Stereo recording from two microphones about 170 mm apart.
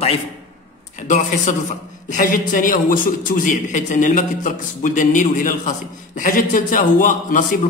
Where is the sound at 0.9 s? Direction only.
45° left (ahead or behind).